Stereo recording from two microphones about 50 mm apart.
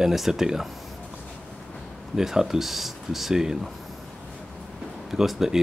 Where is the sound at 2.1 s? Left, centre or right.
Centre.